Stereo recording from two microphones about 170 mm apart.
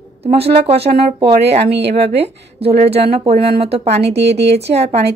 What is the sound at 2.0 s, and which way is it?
Speech, 35° right (ahead or behind).